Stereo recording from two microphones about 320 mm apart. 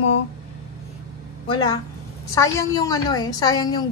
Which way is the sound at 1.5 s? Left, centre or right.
Centre.